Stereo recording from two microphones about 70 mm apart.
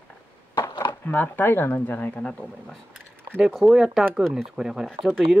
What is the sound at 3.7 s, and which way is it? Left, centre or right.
Speech, centre.